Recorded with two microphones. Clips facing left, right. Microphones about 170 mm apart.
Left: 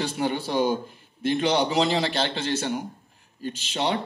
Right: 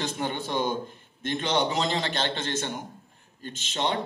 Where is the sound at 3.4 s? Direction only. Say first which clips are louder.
Left 4 dB; 10° left (ahead or behind).